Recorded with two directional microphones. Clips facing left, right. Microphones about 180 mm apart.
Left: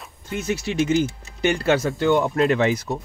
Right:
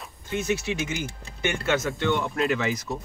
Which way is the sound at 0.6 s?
35° left (ahead or behind).